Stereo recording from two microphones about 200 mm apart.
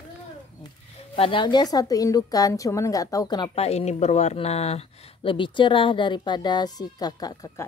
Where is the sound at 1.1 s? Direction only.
25° left (ahead or behind).